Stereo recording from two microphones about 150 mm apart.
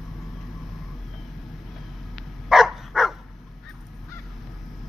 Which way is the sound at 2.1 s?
Centre (ahead or behind).